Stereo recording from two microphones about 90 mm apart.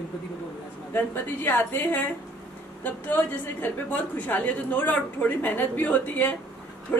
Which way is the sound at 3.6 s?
20° left (ahead or behind).